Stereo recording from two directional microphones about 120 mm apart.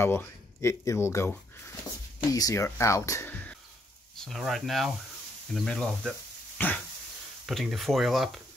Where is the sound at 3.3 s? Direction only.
15° left (ahead or behind).